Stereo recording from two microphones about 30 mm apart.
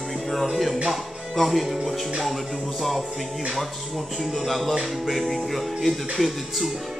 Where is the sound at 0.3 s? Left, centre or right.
Centre.